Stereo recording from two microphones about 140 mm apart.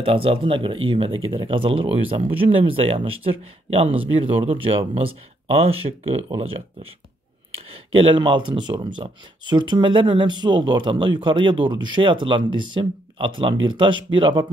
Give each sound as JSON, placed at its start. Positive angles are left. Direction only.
{"t": 0.0, "sound": "speech", "side_deg": -40}
{"t": 7.9, "sound": "speech", "side_deg": -40}